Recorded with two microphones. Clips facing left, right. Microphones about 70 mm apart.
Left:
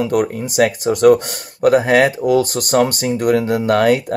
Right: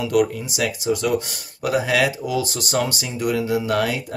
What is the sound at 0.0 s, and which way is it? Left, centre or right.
Speech, left.